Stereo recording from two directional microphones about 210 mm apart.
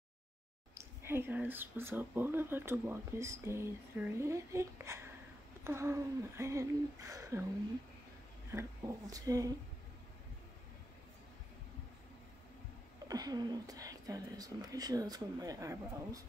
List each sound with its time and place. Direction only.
1.0 s speech: 10° right (ahead or behind)
8.5 s speech: 15° right (ahead or behind)
13.1 s speech: 20° right (ahead or behind)